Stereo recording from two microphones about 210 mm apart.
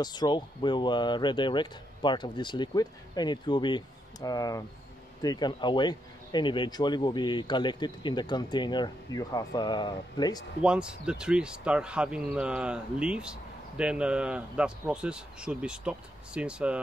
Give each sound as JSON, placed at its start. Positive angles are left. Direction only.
{"t": 0.0, "sound": "speech", "side_deg": 20}
{"t": 10.6, "sound": "speech", "side_deg": -5}